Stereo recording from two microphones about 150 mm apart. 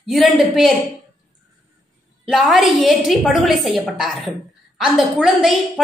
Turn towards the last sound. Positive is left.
turn(degrees=0)  # may be behind; listen again after turning